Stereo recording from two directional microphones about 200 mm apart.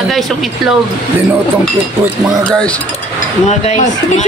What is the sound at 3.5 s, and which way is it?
Speech, 35° left (ahead or behind).